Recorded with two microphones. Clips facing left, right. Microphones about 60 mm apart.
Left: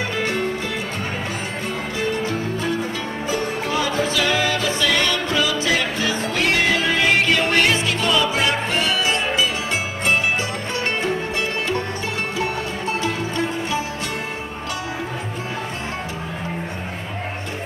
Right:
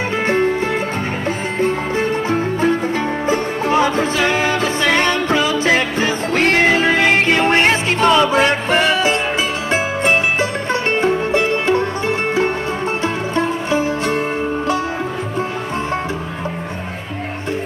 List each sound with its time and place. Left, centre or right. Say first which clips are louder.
2.2 s music: right 7 dB; right
13.7 s music: right 7 dB; right